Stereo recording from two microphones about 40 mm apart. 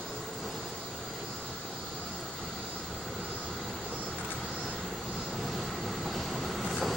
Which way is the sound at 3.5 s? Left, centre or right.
Centre.